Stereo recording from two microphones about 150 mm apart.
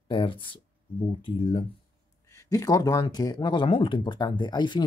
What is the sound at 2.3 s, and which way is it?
Speech, 20° left (ahead or behind).